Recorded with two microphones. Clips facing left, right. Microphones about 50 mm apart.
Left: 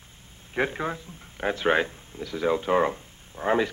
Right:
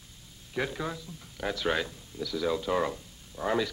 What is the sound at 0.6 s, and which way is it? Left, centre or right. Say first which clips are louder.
Speech: left 5 dB; left.